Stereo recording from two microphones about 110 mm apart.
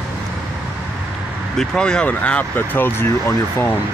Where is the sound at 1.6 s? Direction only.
5° left (ahead or behind).